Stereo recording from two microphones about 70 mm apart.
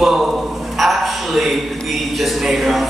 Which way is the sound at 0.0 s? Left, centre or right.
Centre.